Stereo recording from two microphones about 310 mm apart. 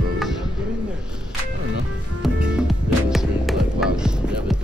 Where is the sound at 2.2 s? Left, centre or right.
Centre.